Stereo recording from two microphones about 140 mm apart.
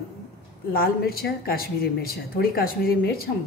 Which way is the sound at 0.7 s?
90° left.